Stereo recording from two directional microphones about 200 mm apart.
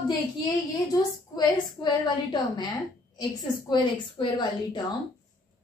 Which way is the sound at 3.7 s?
20° left (ahead or behind).